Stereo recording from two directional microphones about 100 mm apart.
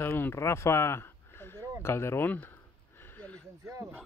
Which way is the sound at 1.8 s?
25° left (ahead or behind).